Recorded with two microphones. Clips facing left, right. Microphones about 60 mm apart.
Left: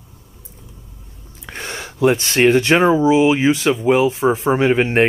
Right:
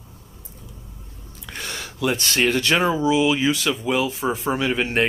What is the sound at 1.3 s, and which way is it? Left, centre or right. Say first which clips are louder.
Speech: left 4 dB; left.